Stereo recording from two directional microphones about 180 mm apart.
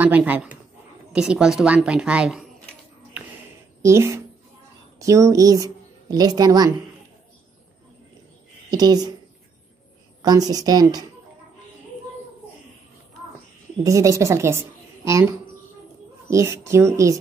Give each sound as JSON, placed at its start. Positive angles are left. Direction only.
{"t": 0.0, "sound": "a woman's voice", "side_deg": -10}
{"t": 3.8, "sound": "a woman's voice", "side_deg": -15}
{"t": 8.7, "sound": "speech", "side_deg": -20}
{"t": 10.2, "sound": "speech", "side_deg": -20}
{"t": 13.8, "sound": "a woman's voice", "side_deg": -15}